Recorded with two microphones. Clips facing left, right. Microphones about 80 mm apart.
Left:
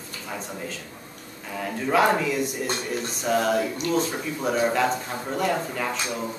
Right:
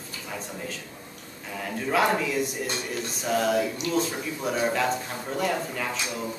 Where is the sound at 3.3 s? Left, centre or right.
Centre.